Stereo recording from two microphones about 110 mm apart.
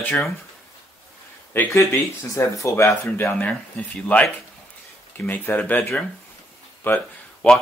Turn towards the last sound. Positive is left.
turn(degrees=15)  # may be behind; listen again after turning